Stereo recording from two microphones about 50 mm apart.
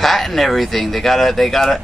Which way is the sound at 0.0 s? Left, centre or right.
Centre.